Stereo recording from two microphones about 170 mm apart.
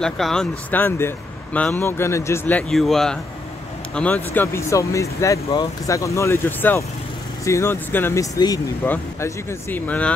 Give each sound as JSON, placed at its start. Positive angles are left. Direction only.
{"t": 0.0, "sound": "speech", "side_deg": 5}